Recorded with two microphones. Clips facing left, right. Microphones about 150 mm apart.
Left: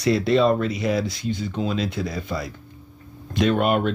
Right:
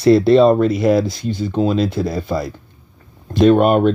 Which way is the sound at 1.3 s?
35° right (ahead or behind).